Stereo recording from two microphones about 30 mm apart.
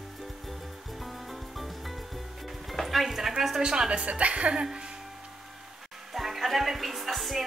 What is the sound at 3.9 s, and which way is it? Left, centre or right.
Speech, right.